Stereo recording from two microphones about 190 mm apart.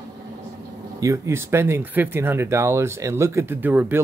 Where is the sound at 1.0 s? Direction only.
15° right (ahead or behind).